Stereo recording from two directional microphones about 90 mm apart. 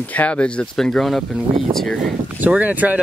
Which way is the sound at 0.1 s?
15° left (ahead or behind).